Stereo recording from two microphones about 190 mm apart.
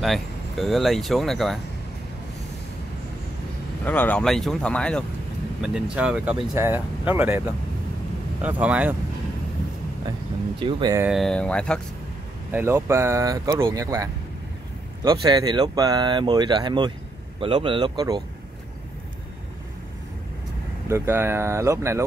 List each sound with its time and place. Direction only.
0.0 s speech: centre (ahead or behind)
3.8 s speech: 10° left (ahead or behind); by 8.9 s 5° right (ahead or behind)
10.6 s speech: 25° right (ahead or behind)
11.0 s speech: centre (ahead or behind)
12.4 s speech: 10° right (ahead or behind)
15.0 s speech: 20° right (ahead or behind)
20.9 s speech: 15° right (ahead or behind)